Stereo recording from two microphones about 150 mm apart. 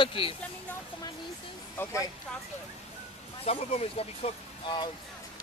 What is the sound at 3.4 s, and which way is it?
Speech, 45° left (ahead or behind).